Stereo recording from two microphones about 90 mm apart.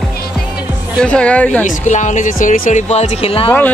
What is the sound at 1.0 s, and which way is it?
Speech, 10° left (ahead or behind).